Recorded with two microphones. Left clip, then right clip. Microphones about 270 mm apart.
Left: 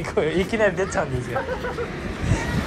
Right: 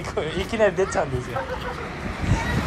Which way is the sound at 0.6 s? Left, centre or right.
Right.